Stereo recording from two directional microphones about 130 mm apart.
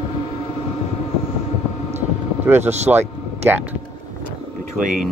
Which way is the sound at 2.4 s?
15° right (ahead or behind).